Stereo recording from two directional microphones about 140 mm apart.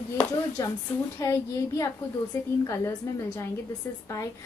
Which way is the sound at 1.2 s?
20° left (ahead or behind).